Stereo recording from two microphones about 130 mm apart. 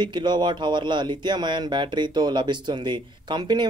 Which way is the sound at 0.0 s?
35° right (ahead or behind).